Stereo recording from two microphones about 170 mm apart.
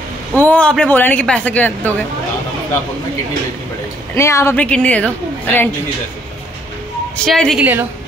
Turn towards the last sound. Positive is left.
turn(degrees=-10)  # may be behind; listen again after turning